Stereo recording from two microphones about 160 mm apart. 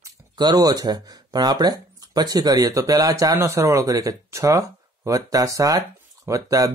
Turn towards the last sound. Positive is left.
turn(degrees=-20)  # may be behind; listen again after turning